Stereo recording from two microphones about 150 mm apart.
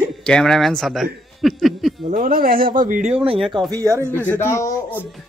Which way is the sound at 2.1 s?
75° right (ahead or behind).